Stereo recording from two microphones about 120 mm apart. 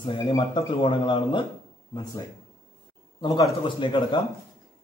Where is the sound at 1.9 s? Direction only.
35° left (ahead or behind).